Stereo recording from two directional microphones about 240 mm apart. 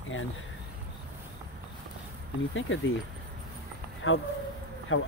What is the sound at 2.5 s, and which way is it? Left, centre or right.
Speech, left.